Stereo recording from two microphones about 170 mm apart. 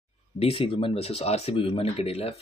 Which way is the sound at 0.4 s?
35° left (ahead or behind).